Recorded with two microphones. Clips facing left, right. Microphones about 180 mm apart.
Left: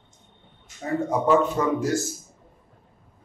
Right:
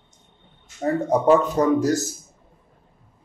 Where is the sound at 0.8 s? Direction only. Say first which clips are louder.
Right 4 dB; 40° right (ahead or behind).